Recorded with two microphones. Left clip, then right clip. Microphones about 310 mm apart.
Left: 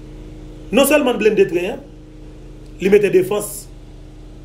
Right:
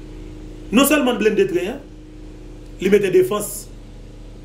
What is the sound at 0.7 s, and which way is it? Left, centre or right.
Speech, centre.